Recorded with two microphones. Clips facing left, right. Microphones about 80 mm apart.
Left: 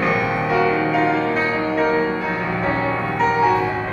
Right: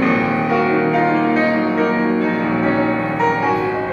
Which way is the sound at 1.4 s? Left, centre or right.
Centre.